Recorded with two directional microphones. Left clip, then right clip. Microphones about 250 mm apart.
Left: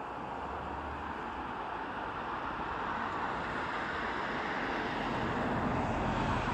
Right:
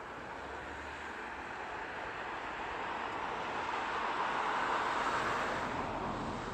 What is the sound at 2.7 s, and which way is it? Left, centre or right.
Vehicle, right.